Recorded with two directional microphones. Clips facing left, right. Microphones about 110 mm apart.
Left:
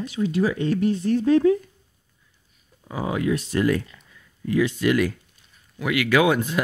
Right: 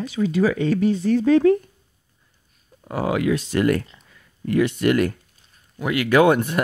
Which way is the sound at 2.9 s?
75° right (ahead or behind).